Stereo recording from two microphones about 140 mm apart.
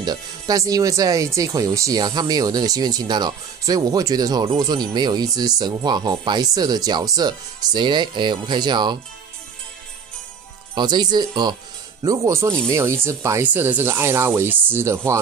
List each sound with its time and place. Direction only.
0.0 s speech: 30° right (ahead or behind)
10.7 s speech: 30° right (ahead or behind)